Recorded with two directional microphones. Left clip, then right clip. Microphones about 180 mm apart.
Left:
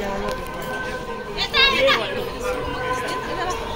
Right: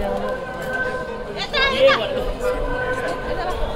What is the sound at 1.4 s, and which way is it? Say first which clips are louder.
Children playing: even; 20° left (ahead or behind).